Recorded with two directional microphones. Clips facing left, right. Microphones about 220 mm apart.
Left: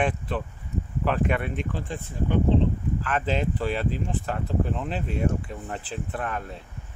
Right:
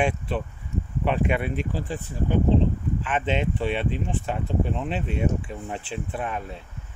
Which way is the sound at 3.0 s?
Centre (ahead or behind).